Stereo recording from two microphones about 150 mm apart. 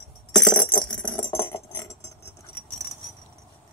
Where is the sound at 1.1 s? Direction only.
35° left (ahead or behind).